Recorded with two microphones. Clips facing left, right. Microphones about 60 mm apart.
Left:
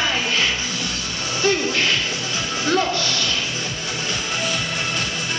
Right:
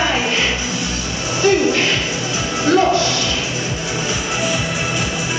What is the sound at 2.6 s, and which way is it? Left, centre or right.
Music, centre.